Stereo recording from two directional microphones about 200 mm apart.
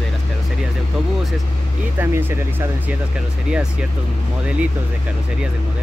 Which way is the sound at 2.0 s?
10° right (ahead or behind).